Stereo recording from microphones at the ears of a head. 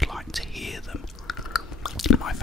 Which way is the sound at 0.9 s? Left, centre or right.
Left.